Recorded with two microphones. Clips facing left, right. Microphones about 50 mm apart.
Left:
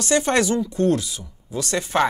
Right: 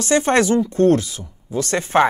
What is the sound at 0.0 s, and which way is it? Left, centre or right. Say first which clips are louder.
Speech: right 3 dB; right.